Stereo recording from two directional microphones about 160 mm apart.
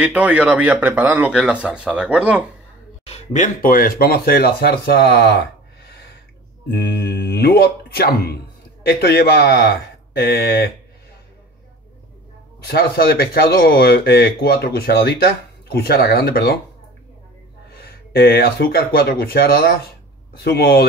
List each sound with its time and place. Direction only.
0.0 s speech: 10° right (ahead or behind)
3.1 s speech: 50° left (ahead or behind); by 5.4 s 75° left (ahead or behind)
6.7 s a man's voice: 90° left
12.6 s speech: 75° left (ahead or behind)
17.7 s a man's voice: 75° left (ahead or behind)